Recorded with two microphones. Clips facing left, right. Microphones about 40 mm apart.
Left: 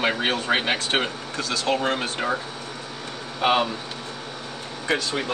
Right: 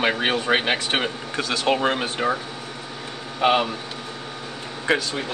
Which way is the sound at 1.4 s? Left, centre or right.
Right.